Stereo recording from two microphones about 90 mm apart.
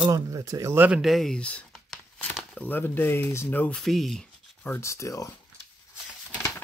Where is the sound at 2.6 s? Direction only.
20° left (ahead or behind).